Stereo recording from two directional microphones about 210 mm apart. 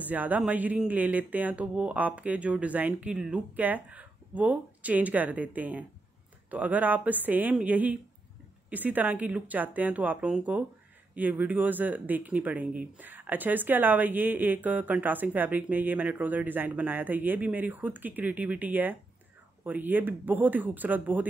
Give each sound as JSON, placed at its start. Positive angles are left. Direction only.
{"t": 0.0, "sound": "speech", "side_deg": -5}